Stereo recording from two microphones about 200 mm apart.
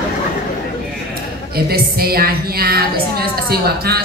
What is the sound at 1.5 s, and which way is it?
A woman's voice, 50° right (ahead or behind).